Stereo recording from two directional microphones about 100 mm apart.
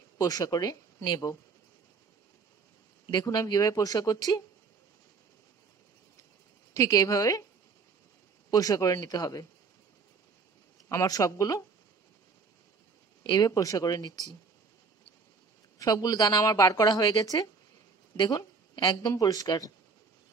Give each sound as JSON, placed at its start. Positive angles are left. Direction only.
{"t": 0.2, "sound": "speech", "side_deg": 40}
{"t": 3.1, "sound": "speech", "side_deg": 45}
{"t": 6.7, "sound": "speech", "side_deg": 35}
{"t": 8.5, "sound": "speech", "side_deg": 40}
{"t": 10.9, "sound": "speech", "side_deg": 35}
{"t": 13.2, "sound": "speech", "side_deg": 40}
{"t": 15.8, "sound": "a woman's voice", "side_deg": 40}